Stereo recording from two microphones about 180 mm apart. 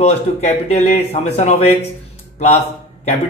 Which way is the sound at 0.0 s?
35° left (ahead or behind).